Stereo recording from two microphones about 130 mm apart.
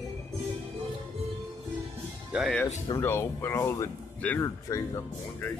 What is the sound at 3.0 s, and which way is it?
Speech, 20° left (ahead or behind).